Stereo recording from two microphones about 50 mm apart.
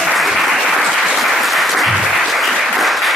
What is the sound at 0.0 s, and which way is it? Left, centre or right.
Applause, centre.